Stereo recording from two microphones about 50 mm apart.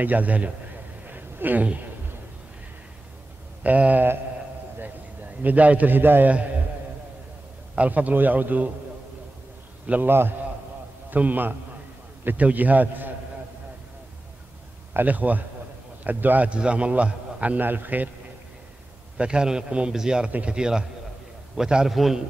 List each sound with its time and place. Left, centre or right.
0.0 s a man's voice: right
1.0 s a sound: right
3.6 s a man's voice: right
4.7 s a sound: right
7.7 s a man's voice: right
10.0 s a man's voice: right
11.1 s a man's voice: right
15.0 s a man's voice: right
16.4 s a man's voice: right
19.1 s a man's voice: centre
20.2 s a man's voice: right
20.5 s a man's voice: centre